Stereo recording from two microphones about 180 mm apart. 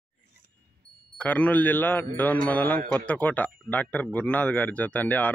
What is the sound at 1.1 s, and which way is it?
Speech, 10° left (ahead or behind).